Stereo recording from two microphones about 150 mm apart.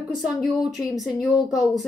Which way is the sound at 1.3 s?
25° left (ahead or behind).